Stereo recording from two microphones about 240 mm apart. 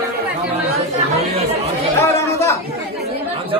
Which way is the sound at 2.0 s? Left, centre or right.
Centre.